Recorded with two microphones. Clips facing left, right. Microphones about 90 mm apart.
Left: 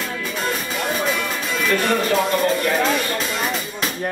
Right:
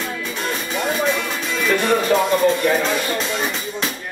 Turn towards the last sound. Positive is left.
turn(degrees=0)  # may be behind; listen again after turning